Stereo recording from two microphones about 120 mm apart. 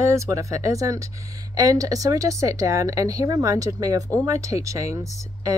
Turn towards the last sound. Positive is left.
turn(degrees=-25)  # may be behind; listen again after turning